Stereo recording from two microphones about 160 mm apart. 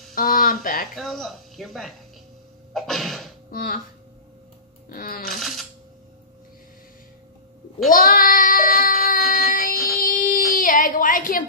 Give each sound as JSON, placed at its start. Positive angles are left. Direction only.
{"t": 0.1, "sound": "speech", "side_deg": 60}
{"t": 0.9, "sound": "speech", "side_deg": 0}
{"t": 2.7, "sound": "music", "side_deg": 0}
{"t": 3.5, "sound": "music", "side_deg": 60}
{"t": 4.8, "sound": "music", "side_deg": 65}
{"t": 5.3, "sound": "a sound", "side_deg": 0}
{"t": 7.9, "sound": "child singing", "side_deg": 60}